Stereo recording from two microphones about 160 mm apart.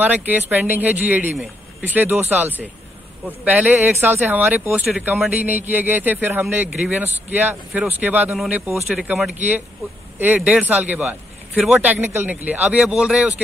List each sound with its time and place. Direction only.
0.0 s speech: 10° right (ahead or behind)